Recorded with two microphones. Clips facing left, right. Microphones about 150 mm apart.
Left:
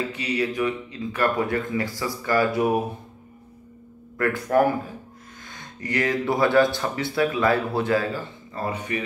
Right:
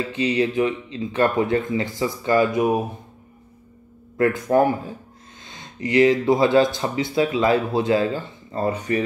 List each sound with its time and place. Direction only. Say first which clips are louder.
0.1 s speech: right 5 dB; 30° right (ahead or behind)
4.2 s speech: right 3 dB; 20° right (ahead or behind)
8.6 s speech: right 6 dB; 35° right (ahead or behind)